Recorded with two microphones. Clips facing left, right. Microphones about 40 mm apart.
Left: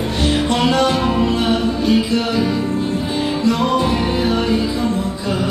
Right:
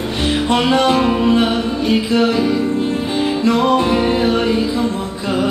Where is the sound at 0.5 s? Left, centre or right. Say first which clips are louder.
Right 4 dB; centre.